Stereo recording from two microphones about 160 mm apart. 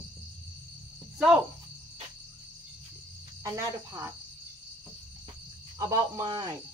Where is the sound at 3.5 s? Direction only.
20° right (ahead or behind).